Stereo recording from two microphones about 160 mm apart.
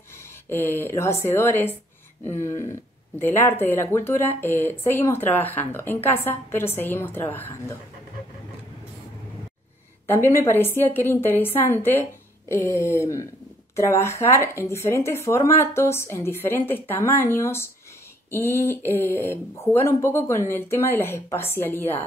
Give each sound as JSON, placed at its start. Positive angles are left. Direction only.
{"t": 0.5, "sound": "speech", "side_deg": 15}
{"t": 10.0, "sound": "speech", "side_deg": 15}